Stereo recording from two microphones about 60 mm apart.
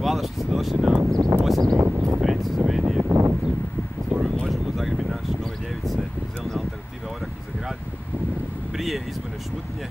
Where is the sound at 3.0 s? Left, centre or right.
Right.